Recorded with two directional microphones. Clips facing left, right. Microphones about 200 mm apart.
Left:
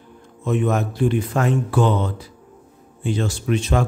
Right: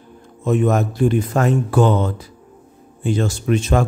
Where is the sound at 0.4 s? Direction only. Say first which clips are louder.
Right 3 dB; 45° right (ahead or behind).